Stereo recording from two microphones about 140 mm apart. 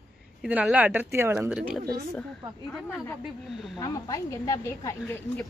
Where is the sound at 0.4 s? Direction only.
10° right (ahead or behind).